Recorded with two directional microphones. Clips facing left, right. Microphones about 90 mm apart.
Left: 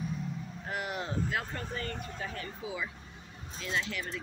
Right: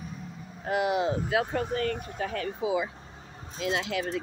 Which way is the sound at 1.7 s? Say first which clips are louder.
Right 8 dB; 65° right (ahead or behind).